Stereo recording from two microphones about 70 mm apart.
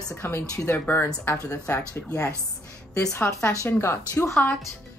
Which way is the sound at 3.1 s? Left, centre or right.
Left.